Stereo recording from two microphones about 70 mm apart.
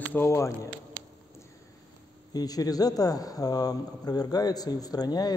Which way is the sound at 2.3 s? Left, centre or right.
Left.